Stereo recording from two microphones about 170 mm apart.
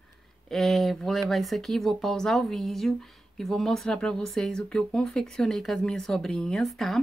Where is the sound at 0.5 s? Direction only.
Centre (ahead or behind).